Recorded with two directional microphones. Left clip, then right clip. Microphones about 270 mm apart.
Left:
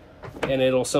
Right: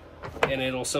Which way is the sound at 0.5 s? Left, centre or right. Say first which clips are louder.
Left 8 dB; centre.